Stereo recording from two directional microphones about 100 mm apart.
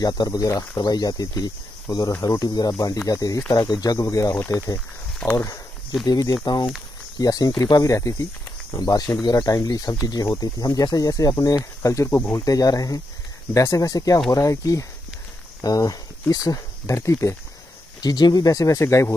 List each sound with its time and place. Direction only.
0.0 s speech: 40° left (ahead or behind)
5.4 s snake: 35° left (ahead or behind)
6.0 s speech: 40° left (ahead or behind)
10.2 s speech: 30° left (ahead or behind)
10.6 s speech: 40° left (ahead or behind)
18.0 s speech: 45° left (ahead or behind)